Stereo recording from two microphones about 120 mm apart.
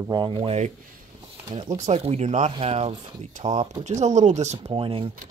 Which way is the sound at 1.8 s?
60° right (ahead or behind).